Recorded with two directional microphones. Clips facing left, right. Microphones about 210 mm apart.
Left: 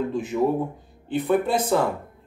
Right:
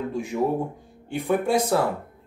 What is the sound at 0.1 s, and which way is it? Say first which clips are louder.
Speech: left 2 dB; 10° right (ahead or behind).